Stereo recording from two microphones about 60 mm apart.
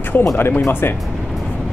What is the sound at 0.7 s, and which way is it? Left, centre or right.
Speech, left.